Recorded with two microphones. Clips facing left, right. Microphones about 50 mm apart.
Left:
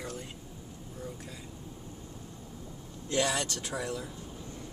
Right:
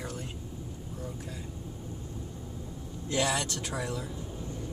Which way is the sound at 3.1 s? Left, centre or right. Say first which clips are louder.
Even; centre.